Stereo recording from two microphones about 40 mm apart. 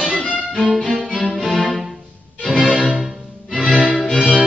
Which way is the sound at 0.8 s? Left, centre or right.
Centre.